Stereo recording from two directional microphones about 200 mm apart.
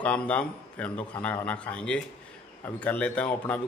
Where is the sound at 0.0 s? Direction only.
5° left (ahead or behind).